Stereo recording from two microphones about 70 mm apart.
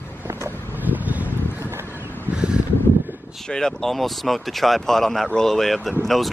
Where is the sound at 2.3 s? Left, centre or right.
Centre.